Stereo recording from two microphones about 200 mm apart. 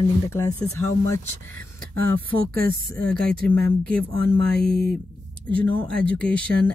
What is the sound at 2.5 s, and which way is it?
Speech, 50° right (ahead or behind).